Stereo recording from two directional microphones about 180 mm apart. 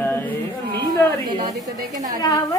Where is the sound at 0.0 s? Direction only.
10° left (ahead or behind).